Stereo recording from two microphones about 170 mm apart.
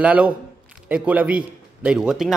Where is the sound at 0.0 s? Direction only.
5° right (ahead or behind).